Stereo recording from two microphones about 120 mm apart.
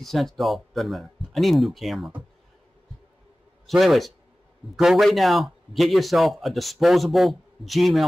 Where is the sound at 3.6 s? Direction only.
Centre (ahead or behind).